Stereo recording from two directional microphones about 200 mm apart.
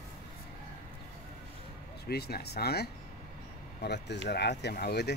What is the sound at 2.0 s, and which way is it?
Speech, 50° left (ahead or behind).